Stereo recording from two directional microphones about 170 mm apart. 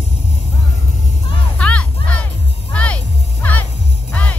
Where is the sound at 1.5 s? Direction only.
5° left (ahead or behind).